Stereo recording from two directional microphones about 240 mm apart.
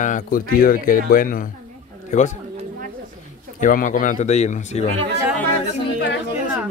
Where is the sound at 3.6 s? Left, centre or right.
Left.